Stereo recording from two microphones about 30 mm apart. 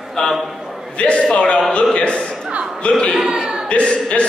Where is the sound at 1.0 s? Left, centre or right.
Left.